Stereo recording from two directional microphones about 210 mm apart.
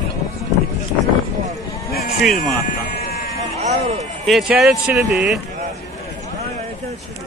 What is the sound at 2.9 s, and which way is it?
Sheep, 50° left (ahead or behind).